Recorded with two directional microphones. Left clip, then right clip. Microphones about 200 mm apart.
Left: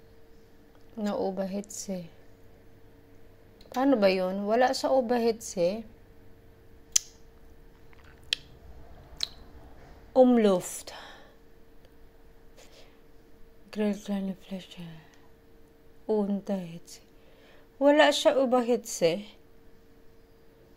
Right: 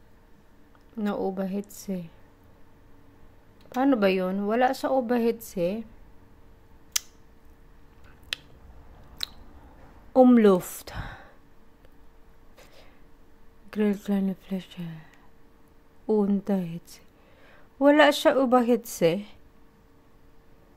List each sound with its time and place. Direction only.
0.9 s speech: 20° right (ahead or behind)
3.7 s speech: 20° right (ahead or behind)
6.9 s a sound: 30° right (ahead or behind)
8.3 s a sound: 25° right (ahead or behind)
9.2 s chewing: 30° right (ahead or behind)
10.1 s a woman's voice: 30° right (ahead or behind)
13.7 s speech: 30° right (ahead or behind)
16.1 s a woman's voice: 30° right (ahead or behind)